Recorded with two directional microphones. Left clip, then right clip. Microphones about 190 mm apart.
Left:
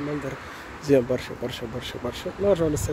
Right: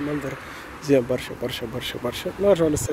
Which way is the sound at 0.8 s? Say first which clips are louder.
Right 1 dB; 10° left (ahead or behind).